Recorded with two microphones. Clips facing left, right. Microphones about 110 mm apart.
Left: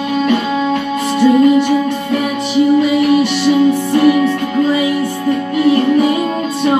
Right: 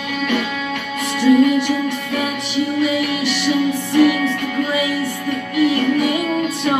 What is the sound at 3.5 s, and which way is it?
Music, 25° left (ahead or behind).